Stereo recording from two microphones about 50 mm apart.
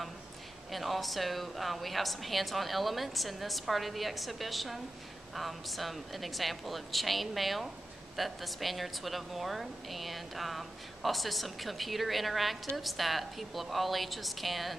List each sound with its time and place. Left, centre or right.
0.7 s a woman's voice: centre